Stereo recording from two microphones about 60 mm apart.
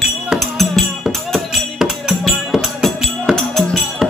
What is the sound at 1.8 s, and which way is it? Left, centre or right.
Music, centre.